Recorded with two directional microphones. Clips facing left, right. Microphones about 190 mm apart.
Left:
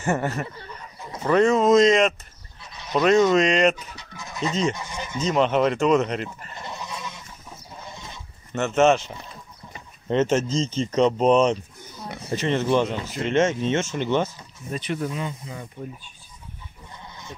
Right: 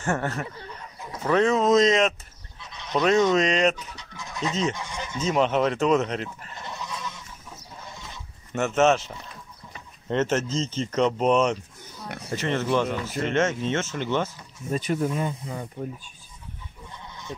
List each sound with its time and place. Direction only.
0.0 s speech: 5° left (ahead or behind)
8.5 s speech: 5° right (ahead or behind)
10.0 s speech: 15° left (ahead or behind)
14.7 s speech: 40° right (ahead or behind)